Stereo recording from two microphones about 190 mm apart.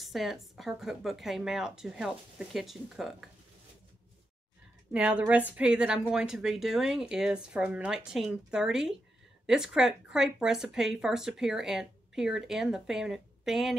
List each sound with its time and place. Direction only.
0.0 s speech: centre (ahead or behind)
4.9 s speech: 5° right (ahead or behind)